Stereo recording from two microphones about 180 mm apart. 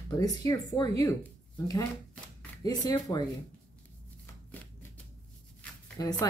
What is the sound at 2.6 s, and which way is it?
Speech, 20° left (ahead or behind).